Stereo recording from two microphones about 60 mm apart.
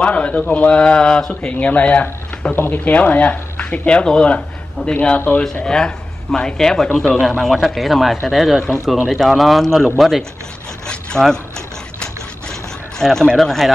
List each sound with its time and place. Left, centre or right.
0.0 s speech: left; by 10.2 s centre
10.9 s a sound: centre
13.0 s speech: centre